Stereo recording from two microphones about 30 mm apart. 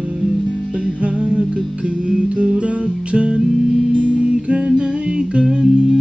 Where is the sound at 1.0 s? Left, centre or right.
Right.